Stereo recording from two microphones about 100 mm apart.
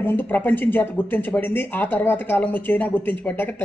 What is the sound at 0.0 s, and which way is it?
A woman's voice, 20° left (ahead or behind).